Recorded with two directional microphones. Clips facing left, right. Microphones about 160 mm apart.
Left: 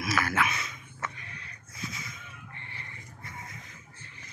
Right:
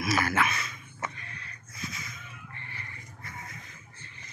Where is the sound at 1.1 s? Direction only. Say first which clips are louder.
Right 1 dB; 15° left (ahead or behind).